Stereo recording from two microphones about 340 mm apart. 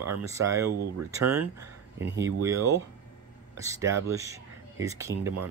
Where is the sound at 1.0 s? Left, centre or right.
Right.